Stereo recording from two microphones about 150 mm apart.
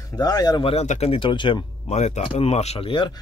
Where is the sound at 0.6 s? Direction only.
40° left (ahead or behind).